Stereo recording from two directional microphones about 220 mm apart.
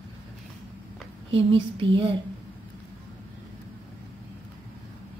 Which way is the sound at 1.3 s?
25° right (ahead or behind).